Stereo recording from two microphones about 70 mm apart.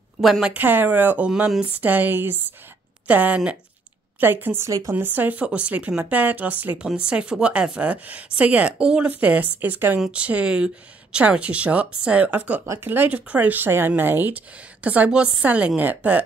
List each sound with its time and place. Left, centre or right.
0.2 s a woman's voice: centre
0.5 s speech: right
4.6 s speech: right
4.9 s speech: right
9.9 s speech: centre; by 16.3 s right